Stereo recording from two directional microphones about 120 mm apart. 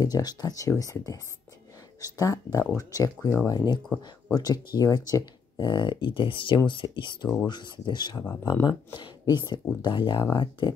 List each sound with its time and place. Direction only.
0.0 s speech: 30° left (ahead or behind)